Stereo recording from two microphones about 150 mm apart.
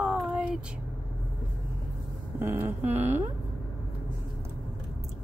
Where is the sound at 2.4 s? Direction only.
15° right (ahead or behind).